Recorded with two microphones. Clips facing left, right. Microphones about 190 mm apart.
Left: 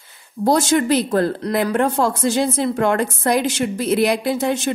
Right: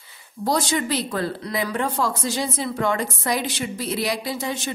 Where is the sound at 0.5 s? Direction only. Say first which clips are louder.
Left 7 dB; 50° left (ahead or behind).